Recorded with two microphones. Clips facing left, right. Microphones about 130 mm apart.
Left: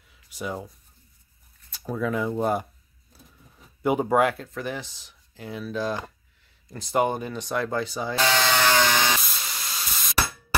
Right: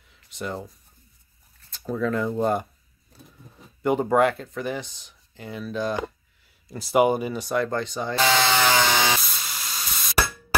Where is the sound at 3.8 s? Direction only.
5° left (ahead or behind).